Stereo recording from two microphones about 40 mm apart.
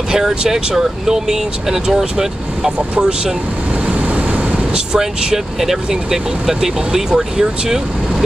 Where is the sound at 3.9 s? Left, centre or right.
Right.